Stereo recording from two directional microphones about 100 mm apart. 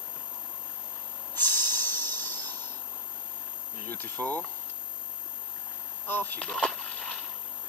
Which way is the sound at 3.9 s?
20° left (ahead or behind).